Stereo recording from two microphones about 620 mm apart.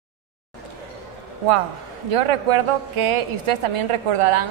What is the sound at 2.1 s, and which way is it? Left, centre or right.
A woman's voice, right.